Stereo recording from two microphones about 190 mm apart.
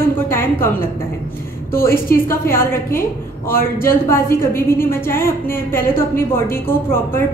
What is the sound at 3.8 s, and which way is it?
A woman's voice, 15° left (ahead or behind).